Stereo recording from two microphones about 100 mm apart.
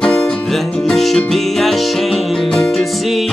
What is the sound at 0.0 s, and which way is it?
Music, 10° left (ahead or behind).